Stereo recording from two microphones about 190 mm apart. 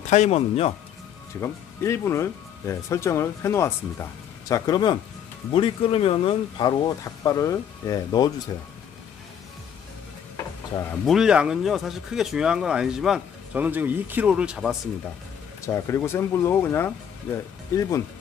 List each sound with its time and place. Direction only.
0.1 s speech: 35° left (ahead or behind)
1.4 s speech: 15° left (ahead or behind)
10.3 s stir: 15° left (ahead or behind)
11.1 s speech: 5° right (ahead or behind)
15.6 s speech: 15° left (ahead or behind)